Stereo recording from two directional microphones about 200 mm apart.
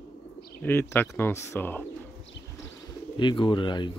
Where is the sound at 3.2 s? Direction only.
25° left (ahead or behind).